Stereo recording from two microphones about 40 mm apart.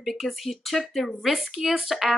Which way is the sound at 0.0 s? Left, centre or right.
Centre.